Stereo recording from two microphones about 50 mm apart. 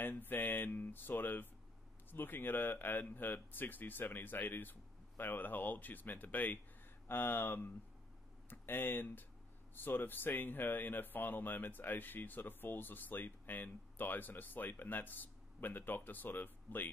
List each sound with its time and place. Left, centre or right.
0.0 s speech: left